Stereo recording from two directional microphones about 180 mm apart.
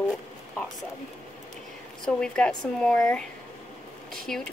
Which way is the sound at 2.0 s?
5° left (ahead or behind).